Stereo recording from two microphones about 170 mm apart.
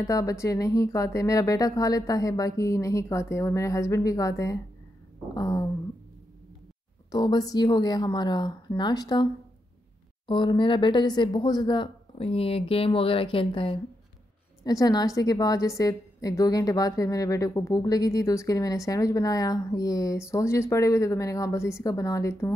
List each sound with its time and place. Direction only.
0.0 s a woman's voice: 20° left (ahead or behind)
7.1 s a woman's voice: 20° left (ahead or behind)
14.6 s a woman's voice: 20° left (ahead or behind)